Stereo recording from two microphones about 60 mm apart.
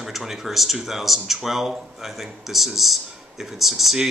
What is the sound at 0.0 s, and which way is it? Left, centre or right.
Speech, centre.